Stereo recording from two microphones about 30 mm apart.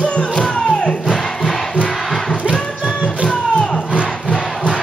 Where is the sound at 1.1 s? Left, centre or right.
Centre.